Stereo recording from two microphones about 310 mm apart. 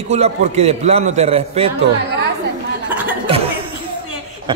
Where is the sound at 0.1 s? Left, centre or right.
Centre.